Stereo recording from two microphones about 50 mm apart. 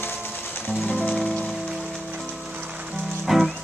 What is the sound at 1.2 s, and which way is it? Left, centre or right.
Rain on surface, centre.